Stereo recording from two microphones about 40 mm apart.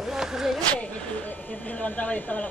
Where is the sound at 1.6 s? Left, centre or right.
Left.